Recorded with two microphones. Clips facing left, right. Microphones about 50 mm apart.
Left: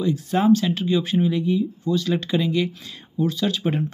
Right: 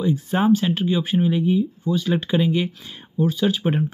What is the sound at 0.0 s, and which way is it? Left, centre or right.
Speech, centre.